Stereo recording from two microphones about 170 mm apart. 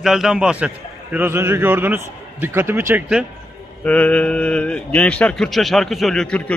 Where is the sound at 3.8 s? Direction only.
10° left (ahead or behind).